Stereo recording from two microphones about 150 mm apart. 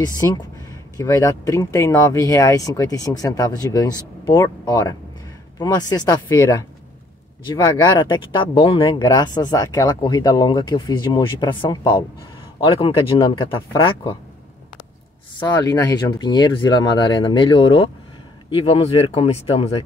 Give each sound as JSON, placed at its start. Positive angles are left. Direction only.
{"t": 0.2, "sound": "speech", "side_deg": 20}
{"t": 15.3, "sound": "speech", "side_deg": 25}